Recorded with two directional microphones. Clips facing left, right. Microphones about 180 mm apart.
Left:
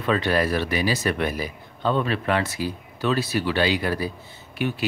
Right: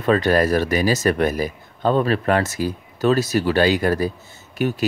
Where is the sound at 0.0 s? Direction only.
45° right (ahead or behind).